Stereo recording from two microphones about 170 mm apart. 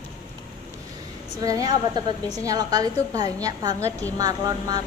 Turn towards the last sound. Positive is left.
turn(degrees=-20)  # may be behind; listen again after turning